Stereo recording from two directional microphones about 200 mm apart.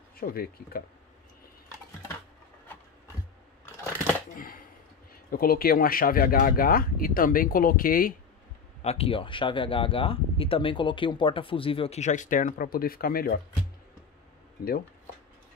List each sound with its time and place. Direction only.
0.2 s speech: 50° left (ahead or behind)
4.4 s a sound: 45° left (ahead or behind)
5.3 s speech: 45° left (ahead or behind)
8.8 s speech: 30° left (ahead or behind); by 13.4 s 50° left (ahead or behind)
14.6 s speech: 45° left (ahead or behind)